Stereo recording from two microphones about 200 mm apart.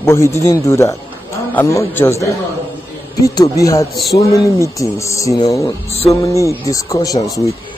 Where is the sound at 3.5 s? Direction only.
15° left (ahead or behind).